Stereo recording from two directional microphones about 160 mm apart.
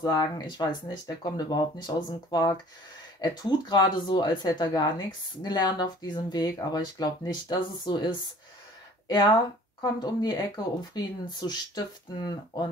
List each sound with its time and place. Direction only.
0.0 s speech: 25° left (ahead or behind)